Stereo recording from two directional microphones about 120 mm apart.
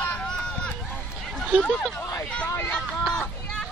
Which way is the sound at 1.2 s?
5° left (ahead or behind).